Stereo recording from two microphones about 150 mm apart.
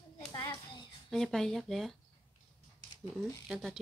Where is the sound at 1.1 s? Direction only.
5° left (ahead or behind).